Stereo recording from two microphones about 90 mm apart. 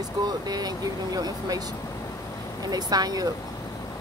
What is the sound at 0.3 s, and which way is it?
Speech, 50° right (ahead or behind).